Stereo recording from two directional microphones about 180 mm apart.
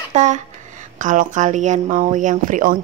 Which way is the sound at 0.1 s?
40° right (ahead or behind).